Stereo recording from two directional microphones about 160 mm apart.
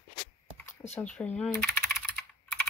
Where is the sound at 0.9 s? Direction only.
5° left (ahead or behind).